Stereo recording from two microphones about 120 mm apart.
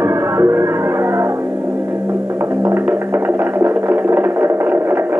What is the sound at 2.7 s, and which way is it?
Music, 15° right (ahead or behind).